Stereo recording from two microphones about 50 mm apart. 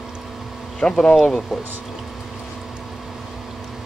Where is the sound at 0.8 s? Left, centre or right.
Centre.